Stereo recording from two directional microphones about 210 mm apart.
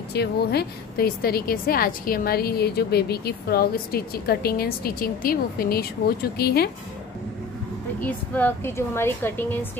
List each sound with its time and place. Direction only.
0.1 s a woman's voice: 50° left (ahead or behind)
8.0 s a woman's voice: 10° left (ahead or behind)